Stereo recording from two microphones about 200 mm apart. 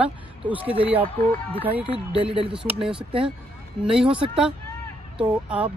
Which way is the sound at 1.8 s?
30° right (ahead or behind).